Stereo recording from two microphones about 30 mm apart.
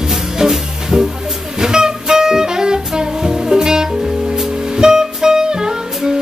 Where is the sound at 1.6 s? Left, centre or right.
Right.